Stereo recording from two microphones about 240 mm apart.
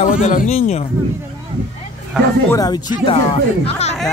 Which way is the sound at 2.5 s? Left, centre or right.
Centre.